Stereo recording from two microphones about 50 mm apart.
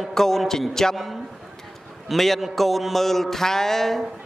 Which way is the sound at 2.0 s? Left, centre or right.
Centre.